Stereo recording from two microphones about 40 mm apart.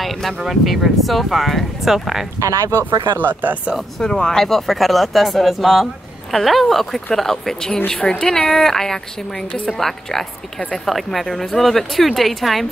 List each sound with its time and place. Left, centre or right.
0.0 s a sound: centre
0.4 s speech: centre
2.7 s speech: right
4.0 s a woman's voice: centre